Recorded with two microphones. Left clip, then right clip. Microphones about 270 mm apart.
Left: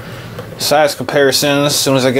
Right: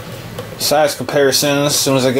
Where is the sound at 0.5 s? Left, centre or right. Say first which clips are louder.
Left 2 dB; centre.